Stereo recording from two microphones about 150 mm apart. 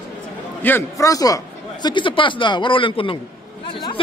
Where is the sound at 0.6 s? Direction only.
15° left (ahead or behind); by 3.2 s 35° left (ahead or behind).